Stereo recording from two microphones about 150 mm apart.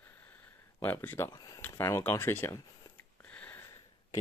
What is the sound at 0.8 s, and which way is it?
Speech, 15° left (ahead or behind).